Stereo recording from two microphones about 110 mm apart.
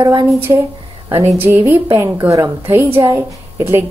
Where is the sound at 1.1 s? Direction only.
20° right (ahead or behind).